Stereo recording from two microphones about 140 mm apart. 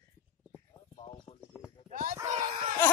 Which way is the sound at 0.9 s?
45° left (ahead or behind).